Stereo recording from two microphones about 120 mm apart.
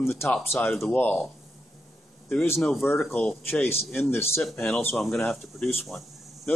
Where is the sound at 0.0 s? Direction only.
20° left (ahead or behind).